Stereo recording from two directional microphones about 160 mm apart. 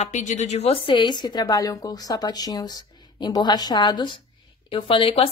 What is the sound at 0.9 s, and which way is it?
A woman's voice, 30° left (ahead or behind).